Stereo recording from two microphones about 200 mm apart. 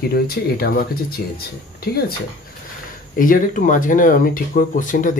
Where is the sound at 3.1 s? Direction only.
45° left (ahead or behind).